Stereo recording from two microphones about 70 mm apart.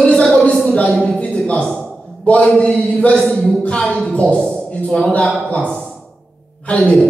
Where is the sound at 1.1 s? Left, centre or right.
Centre.